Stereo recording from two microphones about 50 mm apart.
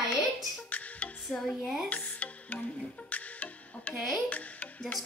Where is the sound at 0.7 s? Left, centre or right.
Left.